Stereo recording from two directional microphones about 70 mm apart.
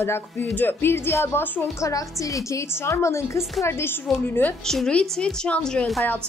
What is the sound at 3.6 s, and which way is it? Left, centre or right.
Speech, left.